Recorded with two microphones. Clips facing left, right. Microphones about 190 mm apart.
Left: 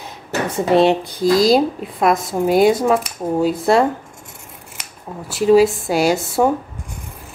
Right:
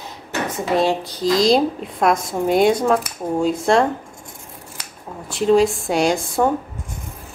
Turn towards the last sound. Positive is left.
turn(degrees=5)  # may be behind; listen again after turning